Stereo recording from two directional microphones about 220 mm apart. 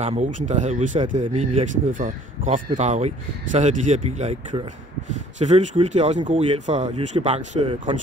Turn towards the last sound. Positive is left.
turn(degrees=-25)  # may be behind; listen again after turning